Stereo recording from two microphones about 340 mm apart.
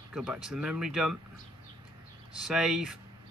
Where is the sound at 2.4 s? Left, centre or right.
Centre.